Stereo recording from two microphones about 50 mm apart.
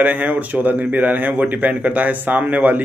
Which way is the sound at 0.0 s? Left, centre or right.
Right.